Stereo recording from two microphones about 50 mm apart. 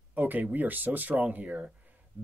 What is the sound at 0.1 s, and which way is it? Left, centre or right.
Speech, right.